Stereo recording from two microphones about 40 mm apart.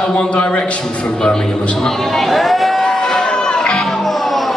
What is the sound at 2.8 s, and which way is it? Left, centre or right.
Music, centre.